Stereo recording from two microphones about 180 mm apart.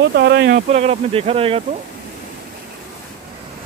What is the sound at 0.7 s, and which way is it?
Speech, 35° right (ahead or behind).